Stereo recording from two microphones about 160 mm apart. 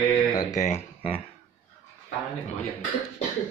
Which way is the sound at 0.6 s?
45° left (ahead or behind).